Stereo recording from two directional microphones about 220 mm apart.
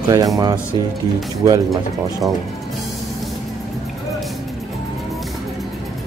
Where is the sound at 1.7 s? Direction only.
Centre (ahead or behind).